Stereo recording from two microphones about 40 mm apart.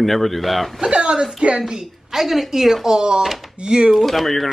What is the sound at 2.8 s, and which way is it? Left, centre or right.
Speech, right.